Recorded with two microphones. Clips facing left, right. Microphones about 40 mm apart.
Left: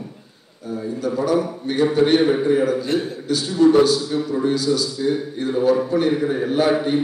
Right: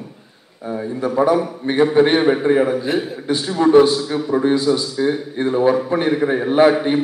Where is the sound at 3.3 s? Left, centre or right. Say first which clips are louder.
Even; right.